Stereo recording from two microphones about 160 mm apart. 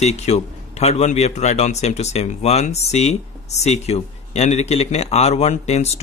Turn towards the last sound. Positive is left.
turn(degrees=45)  # may be behind; listen again after turning